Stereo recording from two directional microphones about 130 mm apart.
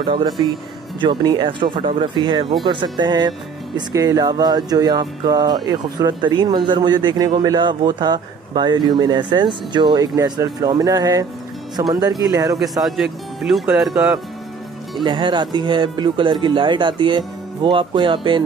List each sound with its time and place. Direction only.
0.0 s speech: 35° right (ahead or behind)
12.8 s speech: centre (ahead or behind)
15.0 s speech: 35° right (ahead or behind)